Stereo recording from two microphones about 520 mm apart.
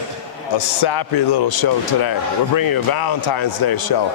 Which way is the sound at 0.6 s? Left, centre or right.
Left.